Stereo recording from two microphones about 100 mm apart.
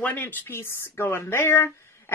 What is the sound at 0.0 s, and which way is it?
Speech, 20° left (ahead or behind).